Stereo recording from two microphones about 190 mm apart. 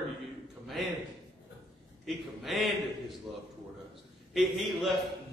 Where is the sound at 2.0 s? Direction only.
Centre (ahead or behind).